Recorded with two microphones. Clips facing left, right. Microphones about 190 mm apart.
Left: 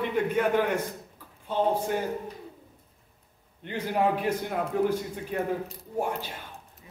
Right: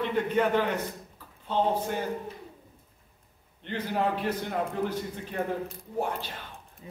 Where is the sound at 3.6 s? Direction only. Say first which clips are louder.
Left 2 dB; 10° left (ahead or behind).